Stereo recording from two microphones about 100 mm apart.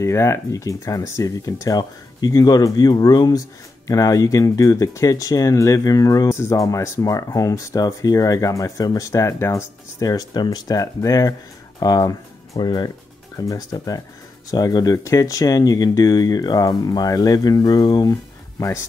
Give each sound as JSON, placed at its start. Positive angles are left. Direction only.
{"t": 0.0, "sound": "speech", "side_deg": 30}